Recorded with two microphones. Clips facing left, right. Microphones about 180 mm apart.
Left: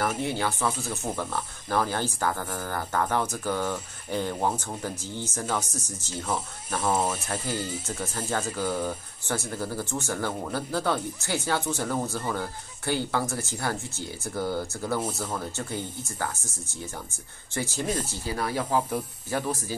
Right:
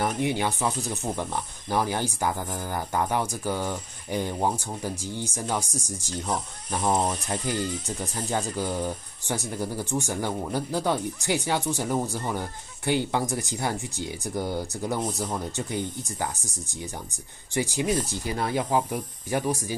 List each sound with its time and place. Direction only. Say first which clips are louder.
0.2 s speech: right 2 dB; 15° right (ahead or behind)
7.0 s speech: right 1 dB; 5° left (ahead or behind)
8.3 s speech: right 1 dB; 15° right (ahead or behind)
18.8 s speech: even; 10° right (ahead or behind)